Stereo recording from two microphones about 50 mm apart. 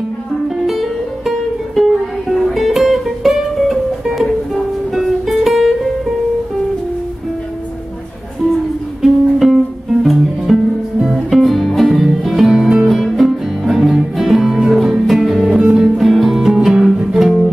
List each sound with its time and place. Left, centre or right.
0.7 s music: centre
9.0 s music: centre
15.5 s music: centre
16.0 s music: centre